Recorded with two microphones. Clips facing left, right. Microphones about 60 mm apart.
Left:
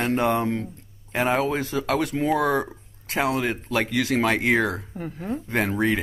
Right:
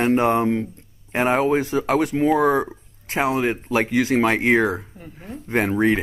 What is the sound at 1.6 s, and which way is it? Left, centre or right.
Speech, right.